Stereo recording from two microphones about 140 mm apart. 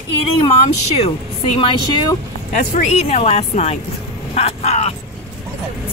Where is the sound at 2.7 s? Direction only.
55° left (ahead or behind).